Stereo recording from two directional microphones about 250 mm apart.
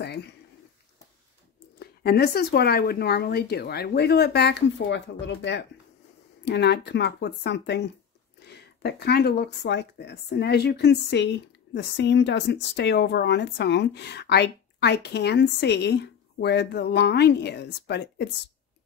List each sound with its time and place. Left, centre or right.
1.8 s speech: left